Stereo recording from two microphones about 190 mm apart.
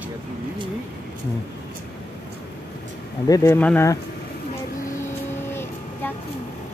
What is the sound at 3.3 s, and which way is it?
Speech, 15° left (ahead or behind).